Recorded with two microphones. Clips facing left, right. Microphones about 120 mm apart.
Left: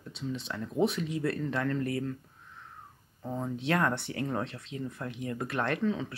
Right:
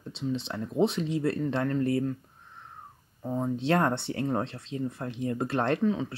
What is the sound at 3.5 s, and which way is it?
Speech, 30° right (ahead or behind).